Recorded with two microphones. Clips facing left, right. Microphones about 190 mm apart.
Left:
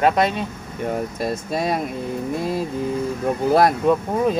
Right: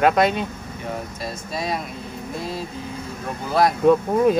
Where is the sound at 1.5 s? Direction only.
50° left (ahead or behind).